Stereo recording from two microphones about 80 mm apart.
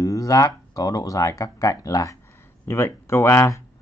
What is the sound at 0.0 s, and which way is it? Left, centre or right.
Speech, left.